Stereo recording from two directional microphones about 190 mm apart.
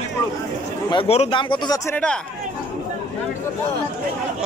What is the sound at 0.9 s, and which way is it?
A man's voice, 30° left (ahead or behind).